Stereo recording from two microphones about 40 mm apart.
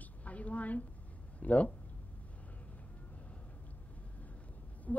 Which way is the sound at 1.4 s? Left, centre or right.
Left.